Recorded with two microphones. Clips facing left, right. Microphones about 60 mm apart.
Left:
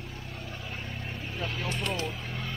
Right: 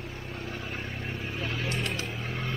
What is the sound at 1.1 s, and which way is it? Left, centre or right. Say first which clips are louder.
Vehicle: right 1 dB; right.